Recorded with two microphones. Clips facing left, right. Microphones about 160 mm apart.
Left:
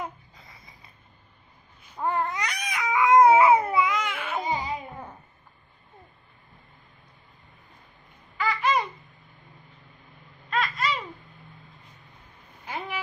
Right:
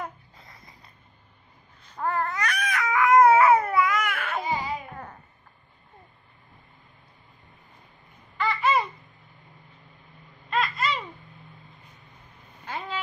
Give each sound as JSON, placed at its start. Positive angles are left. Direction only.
{"t": 1.8, "sound": "babbling", "side_deg": 10}
{"t": 2.0, "sound": "baby cry", "side_deg": 20}
{"t": 8.4, "sound": "babbling", "side_deg": 0}
{"t": 10.5, "sound": "baby laughter", "side_deg": 0}
{"t": 12.6, "sound": "a sound", "side_deg": 10}